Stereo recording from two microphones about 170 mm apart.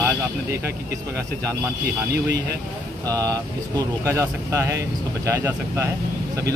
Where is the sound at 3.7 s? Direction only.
15° right (ahead or behind).